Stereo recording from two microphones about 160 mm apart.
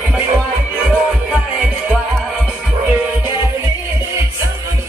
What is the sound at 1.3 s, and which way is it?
Music, 5° right (ahead or behind).